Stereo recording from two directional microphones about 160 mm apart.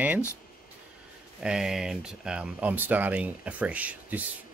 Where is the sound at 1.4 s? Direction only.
5° right (ahead or behind).